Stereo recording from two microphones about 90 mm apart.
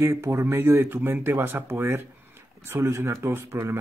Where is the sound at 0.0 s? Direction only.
30° right (ahead or behind).